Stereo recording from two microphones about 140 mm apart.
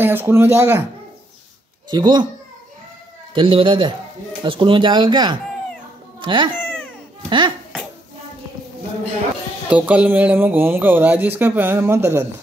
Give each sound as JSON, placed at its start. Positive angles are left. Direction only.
{"t": 0.0, "sound": "speech", "side_deg": -15}
{"t": 1.9, "sound": "speech", "side_deg": -30}
{"t": 3.3, "sound": "speech", "side_deg": -40}
{"t": 9.7, "sound": "speech", "side_deg": -10}